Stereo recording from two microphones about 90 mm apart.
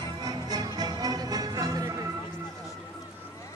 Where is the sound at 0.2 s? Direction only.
45° right (ahead or behind).